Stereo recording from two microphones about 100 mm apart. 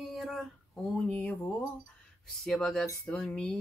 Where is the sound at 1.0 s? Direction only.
20° left (ahead or behind).